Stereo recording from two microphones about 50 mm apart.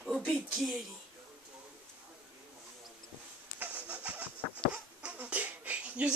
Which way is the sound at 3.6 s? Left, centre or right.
Right.